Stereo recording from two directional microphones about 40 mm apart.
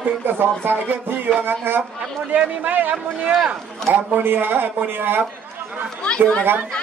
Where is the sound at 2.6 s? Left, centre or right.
Right.